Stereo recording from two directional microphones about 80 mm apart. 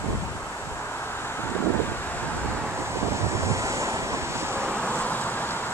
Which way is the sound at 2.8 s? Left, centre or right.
Right.